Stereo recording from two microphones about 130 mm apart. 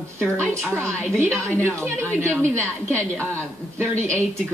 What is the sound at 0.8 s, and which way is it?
Speech, 20° right (ahead or behind).